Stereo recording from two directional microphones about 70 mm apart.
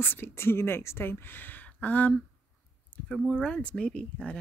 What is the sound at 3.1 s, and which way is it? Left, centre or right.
Speech, centre.